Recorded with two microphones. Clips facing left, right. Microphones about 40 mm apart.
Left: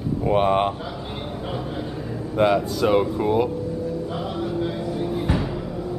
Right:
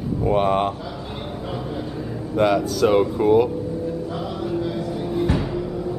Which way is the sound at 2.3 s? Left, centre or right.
Centre.